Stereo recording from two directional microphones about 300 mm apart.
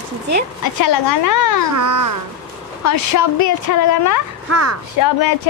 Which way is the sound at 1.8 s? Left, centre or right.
Right.